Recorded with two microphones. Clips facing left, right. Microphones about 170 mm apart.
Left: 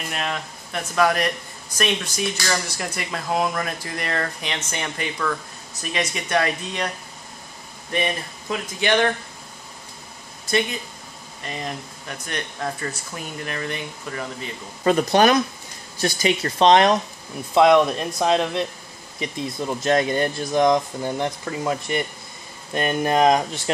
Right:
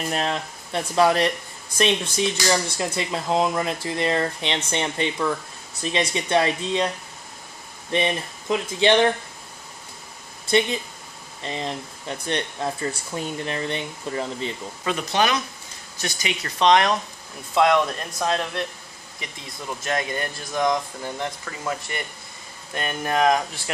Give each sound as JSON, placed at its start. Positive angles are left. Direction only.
{"t": 0.1, "sound": "speech", "side_deg": -30}
{"t": 7.9, "sound": "speech", "side_deg": -25}
{"t": 10.5, "sound": "speech", "side_deg": -30}
{"t": 14.9, "sound": "speech", "side_deg": 45}
{"t": 16.0, "sound": "speech", "side_deg": 35}